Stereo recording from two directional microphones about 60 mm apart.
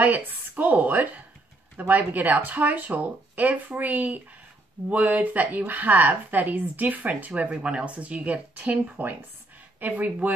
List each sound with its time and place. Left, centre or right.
0.2 s a woman's voice: right